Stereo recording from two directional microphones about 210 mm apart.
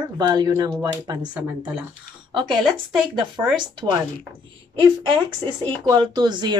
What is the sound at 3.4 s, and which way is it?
Speech, 15° right (ahead or behind).